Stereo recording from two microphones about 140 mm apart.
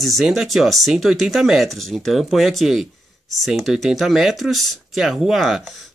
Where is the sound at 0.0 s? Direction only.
Centre (ahead or behind).